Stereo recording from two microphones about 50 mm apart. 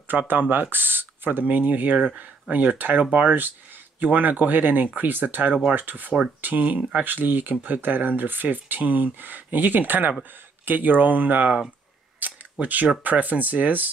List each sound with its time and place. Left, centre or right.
0.1 s speech: right
7.1 s speech: right
12.2 s camera: right
13.0 s speech: right